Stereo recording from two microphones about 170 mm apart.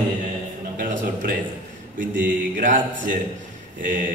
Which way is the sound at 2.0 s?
50° right (ahead or behind).